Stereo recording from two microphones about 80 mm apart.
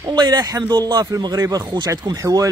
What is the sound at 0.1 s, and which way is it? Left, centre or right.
Speech, right.